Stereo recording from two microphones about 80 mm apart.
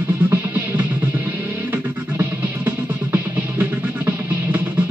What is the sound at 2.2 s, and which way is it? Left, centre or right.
Music, right.